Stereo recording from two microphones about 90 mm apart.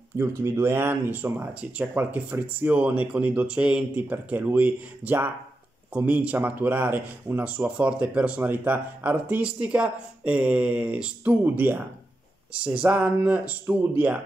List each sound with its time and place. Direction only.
0.2 s speech: 30° right (ahead or behind); by 11.3 s 15° right (ahead or behind)
11.4 s speech: 25° right (ahead or behind)